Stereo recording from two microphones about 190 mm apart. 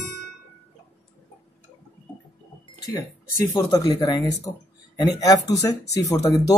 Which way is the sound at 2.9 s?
15° left (ahead or behind).